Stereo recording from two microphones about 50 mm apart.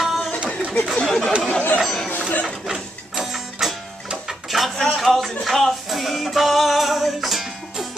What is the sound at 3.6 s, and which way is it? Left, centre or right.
Music, centre.